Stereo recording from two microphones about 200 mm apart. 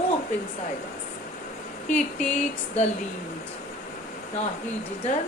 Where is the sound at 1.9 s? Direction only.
35° left (ahead or behind).